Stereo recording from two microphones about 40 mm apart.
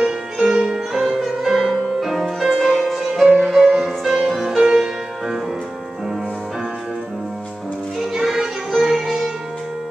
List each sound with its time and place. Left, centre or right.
0.0 s music: centre
1.1 s music: centre
3.2 s music: centre
4.6 s music: right
8.0 s music: centre